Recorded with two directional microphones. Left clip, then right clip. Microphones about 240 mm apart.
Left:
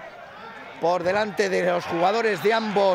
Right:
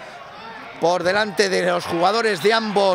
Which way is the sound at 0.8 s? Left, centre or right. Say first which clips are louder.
Right 4 dB; centre.